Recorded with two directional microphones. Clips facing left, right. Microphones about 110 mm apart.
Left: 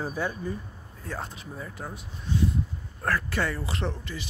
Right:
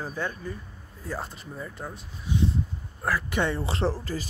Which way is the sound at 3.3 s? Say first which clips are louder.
Right 3 dB; 25° right (ahead or behind).